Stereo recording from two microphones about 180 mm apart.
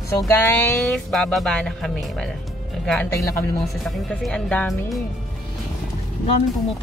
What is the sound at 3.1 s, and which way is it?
Speech, 15° left (ahead or behind).